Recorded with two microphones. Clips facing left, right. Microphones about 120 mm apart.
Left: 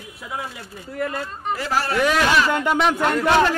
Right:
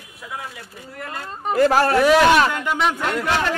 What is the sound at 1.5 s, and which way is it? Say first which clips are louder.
Speech: right 8 dB; 50° right (ahead or behind).